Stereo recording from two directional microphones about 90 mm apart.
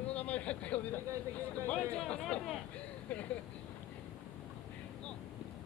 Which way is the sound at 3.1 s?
15° left (ahead or behind).